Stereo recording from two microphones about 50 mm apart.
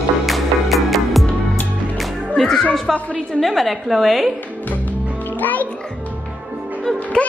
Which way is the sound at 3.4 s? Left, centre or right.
Centre.